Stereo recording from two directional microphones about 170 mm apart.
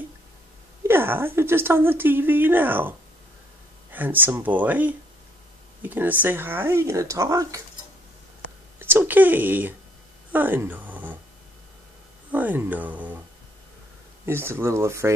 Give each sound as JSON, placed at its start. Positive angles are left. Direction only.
{"t": 0.8, "sound": "a woman's voice", "side_deg": -15}
{"t": 3.9, "sound": "a woman's voice", "side_deg": -10}
{"t": 8.7, "sound": "a woman's voice", "side_deg": -15}
{"t": 12.3, "sound": "a woman's voice", "side_deg": -10}
{"t": 14.2, "sound": "a woman's voice", "side_deg": -15}